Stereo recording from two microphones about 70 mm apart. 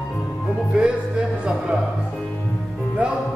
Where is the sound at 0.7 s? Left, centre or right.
Centre.